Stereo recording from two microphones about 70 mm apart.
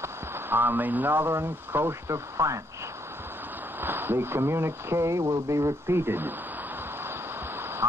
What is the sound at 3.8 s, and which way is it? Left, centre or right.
Speech, right.